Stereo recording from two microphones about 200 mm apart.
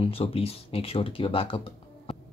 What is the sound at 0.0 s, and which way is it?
Speech, 25° left (ahead or behind).